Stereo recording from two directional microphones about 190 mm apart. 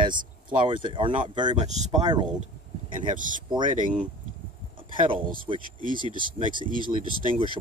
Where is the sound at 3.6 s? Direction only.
45° right (ahead or behind).